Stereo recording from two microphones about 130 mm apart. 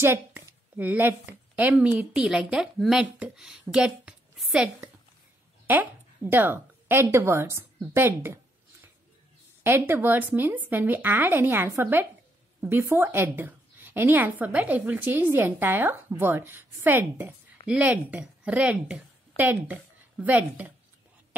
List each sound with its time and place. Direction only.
0.0 s a woman's voice: 20° right (ahead or behind)
3.7 s a sound: 5° right (ahead or behind)
5.7 s a woman's voice: 15° right (ahead or behind)
9.6 s a woman's voice: 20° right (ahead or behind)